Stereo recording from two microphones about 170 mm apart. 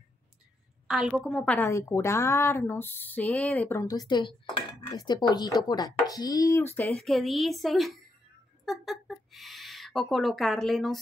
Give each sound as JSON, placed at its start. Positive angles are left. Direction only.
{"t": 0.8, "sound": "a child's voice", "side_deg": 0}
{"t": 3.8, "sound": "speech", "side_deg": 20}
{"t": 7.0, "sound": "a child's voice", "side_deg": 0}